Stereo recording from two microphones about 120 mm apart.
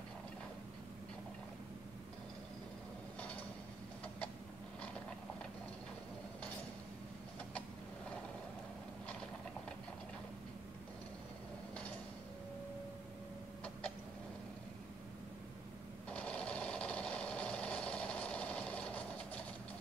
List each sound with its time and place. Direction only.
16.1 s sewing machine: 10° left (ahead or behind)